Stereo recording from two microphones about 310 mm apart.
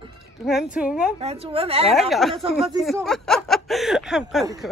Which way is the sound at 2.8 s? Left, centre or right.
Centre.